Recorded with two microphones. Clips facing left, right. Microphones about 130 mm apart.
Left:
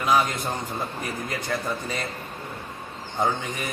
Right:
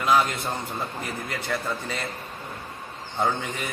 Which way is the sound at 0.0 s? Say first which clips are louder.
Even; 15° left (ahead or behind).